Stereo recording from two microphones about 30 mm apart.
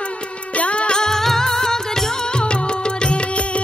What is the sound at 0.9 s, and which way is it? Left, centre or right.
Music, centre.